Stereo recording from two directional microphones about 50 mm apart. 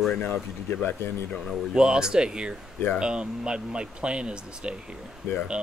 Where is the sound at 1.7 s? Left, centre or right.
Centre.